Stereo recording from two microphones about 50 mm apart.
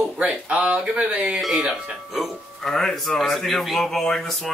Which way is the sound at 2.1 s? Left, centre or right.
Centre.